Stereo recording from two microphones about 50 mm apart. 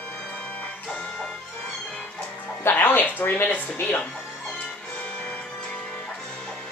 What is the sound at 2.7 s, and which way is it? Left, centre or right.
A woman's voice, left.